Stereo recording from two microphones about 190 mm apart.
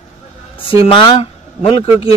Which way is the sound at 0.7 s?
30° left (ahead or behind).